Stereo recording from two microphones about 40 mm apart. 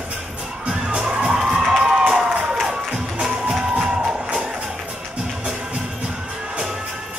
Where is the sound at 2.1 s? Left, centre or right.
Centre.